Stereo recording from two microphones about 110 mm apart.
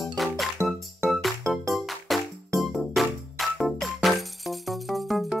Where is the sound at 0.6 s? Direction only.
25° right (ahead or behind).